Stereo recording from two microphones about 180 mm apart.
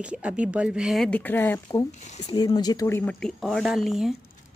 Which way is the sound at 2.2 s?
25° left (ahead or behind).